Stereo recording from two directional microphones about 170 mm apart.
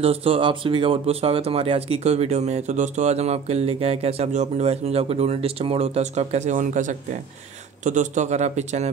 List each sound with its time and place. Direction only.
0.0 s a man's voice: 35° right (ahead or behind)